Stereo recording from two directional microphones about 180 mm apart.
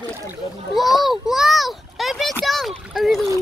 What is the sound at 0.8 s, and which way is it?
A child's voice, centre (ahead or behind).